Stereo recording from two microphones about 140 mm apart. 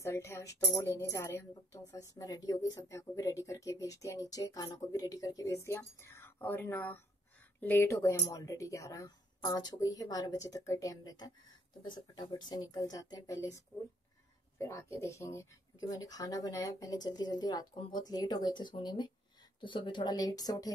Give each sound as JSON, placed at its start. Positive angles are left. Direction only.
{"t": 0.0, "sound": "speech", "side_deg": 20}
{"t": 14.6, "sound": "speech", "side_deg": 20}